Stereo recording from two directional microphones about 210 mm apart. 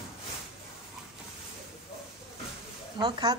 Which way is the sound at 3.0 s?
20° right (ahead or behind).